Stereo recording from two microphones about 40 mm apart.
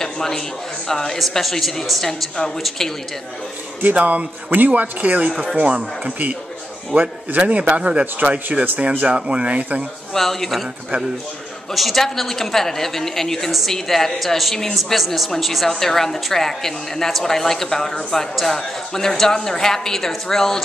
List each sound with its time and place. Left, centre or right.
0.0 s a sound: centre
0.8 s a woman's voice: centre
1.1 s speech: centre
2.3 s a woman's voice: centre
3.8 s speech: right
5.3 s speech: centre
5.6 s speech: right
6.9 s speech: right
7.2 s speech: right
10.1 s a woman's voice: centre
11.7 s a woman's voice: centre